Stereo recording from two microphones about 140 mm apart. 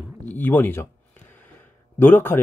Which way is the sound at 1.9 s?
15° left (ahead or behind).